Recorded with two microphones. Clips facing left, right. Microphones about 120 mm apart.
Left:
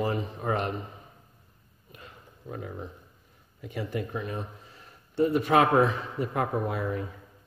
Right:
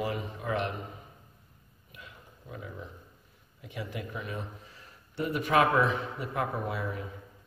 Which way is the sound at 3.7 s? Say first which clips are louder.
Left 6 dB; 50° left (ahead or behind).